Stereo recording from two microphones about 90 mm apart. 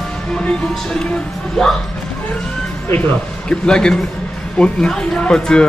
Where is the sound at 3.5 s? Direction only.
10° left (ahead or behind).